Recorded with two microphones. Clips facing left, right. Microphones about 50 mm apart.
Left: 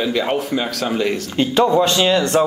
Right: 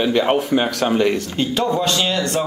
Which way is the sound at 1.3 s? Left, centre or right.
Left.